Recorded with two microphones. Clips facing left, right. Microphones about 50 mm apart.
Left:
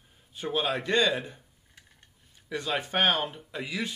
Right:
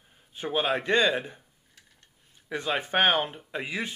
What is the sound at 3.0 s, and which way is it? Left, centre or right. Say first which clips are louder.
Speech: right 2 dB; centre.